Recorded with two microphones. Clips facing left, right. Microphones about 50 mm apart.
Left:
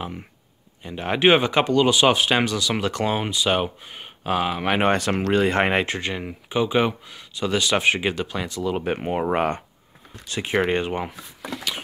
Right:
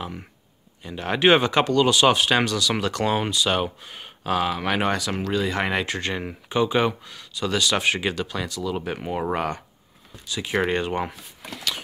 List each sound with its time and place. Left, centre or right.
0.8 s speech: centre
4.8 s speech: left
5.9 s speech: centre
10.1 s speech: left
10.7 s speech: centre